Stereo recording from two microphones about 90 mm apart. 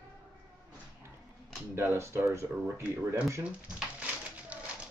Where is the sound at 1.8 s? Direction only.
30° right (ahead or behind).